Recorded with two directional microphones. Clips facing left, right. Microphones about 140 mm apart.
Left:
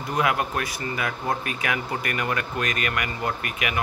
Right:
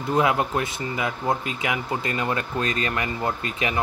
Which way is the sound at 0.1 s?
25° right (ahead or behind).